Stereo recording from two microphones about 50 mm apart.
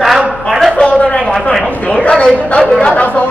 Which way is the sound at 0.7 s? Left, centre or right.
Left.